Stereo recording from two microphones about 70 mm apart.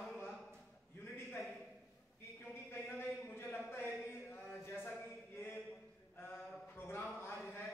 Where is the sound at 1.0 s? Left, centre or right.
Left.